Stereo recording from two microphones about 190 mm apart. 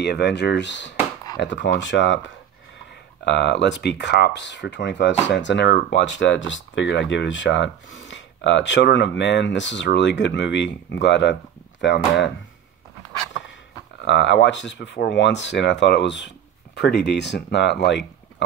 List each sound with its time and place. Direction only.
0.0 s speech: 65° left (ahead or behind)
14.0 s speech: 70° left (ahead or behind)